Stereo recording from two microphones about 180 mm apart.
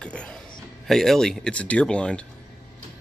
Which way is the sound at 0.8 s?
Centre (ahead or behind).